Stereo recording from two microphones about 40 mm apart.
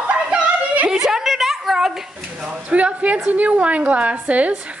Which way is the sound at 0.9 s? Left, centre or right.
Centre.